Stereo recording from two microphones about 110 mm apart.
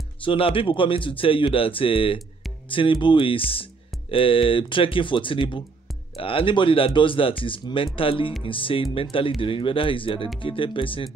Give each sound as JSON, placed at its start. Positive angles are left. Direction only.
{"t": 0.2, "sound": "speech", "side_deg": 55}